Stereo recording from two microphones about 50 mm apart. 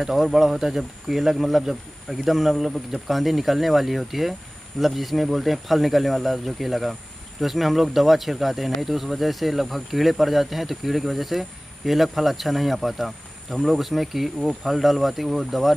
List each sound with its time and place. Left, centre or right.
0.0 s speech: centre